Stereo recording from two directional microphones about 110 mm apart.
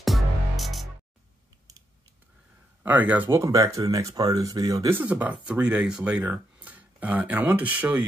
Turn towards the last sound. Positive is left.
turn(degrees=-15)  # may be behind; listen again after turning